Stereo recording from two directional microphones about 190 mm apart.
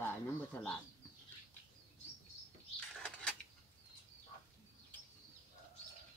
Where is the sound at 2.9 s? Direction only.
5° left (ahead or behind).